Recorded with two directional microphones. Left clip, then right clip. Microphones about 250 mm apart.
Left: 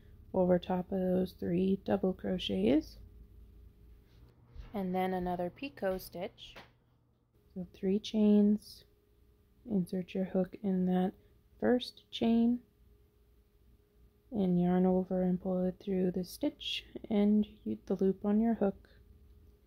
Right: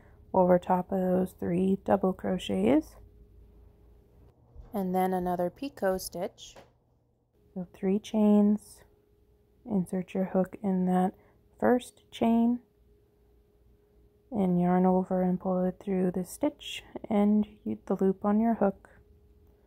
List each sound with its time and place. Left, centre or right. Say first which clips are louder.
0.3 s speech: right 7 dB; centre
4.7 s speech: right 6 dB; centre
7.5 s speech: right 4 dB; centre
9.7 s speech: right 4 dB; centre
14.3 s speech: right 5 dB; centre